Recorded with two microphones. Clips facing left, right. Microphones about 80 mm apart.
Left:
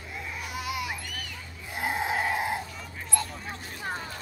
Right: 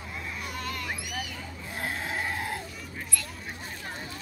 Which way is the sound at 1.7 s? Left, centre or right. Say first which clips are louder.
Left 5 dB; centre.